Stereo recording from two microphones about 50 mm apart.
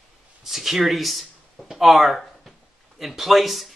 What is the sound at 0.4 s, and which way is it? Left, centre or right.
Speech, centre.